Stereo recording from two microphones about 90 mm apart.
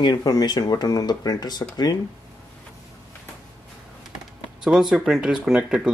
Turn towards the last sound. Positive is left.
turn(degrees=-5)  # may be behind; listen again after turning